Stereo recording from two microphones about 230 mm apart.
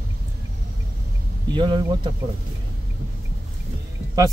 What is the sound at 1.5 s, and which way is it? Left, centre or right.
Speech, right.